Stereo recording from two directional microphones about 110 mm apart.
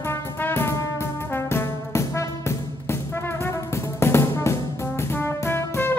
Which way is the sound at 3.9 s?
25° left (ahead or behind).